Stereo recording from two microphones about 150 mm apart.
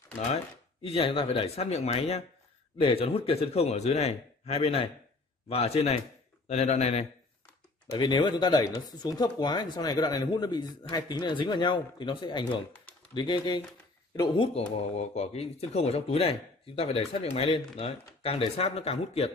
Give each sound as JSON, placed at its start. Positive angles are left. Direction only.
{"t": 0.8, "sound": "a man's voice", "side_deg": 40}
{"t": 7.9, "sound": "a man's voice", "side_deg": 30}